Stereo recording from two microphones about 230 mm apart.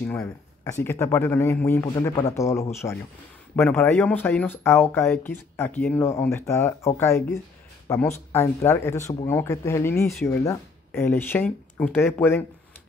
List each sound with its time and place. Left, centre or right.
0.1 s speech: centre